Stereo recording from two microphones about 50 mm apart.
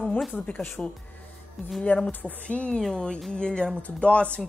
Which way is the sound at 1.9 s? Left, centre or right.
Left.